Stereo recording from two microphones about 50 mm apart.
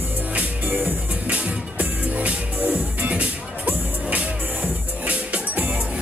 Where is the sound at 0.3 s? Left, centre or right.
Right.